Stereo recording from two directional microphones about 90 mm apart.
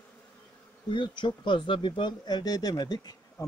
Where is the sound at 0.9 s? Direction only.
65° left (ahead or behind).